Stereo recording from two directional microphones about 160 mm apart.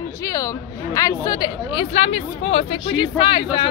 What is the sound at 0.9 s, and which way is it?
Speech, 20° left (ahead or behind).